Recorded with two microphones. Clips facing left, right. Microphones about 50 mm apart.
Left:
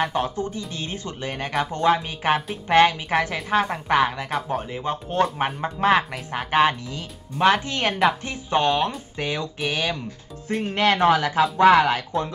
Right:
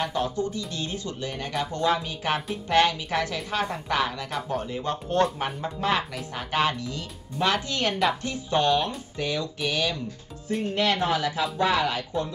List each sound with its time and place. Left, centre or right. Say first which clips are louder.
0.0 s speech: left 3 dB; left
5.4 s speech: left 6 dB; left
10.7 s speech: left 7 dB; left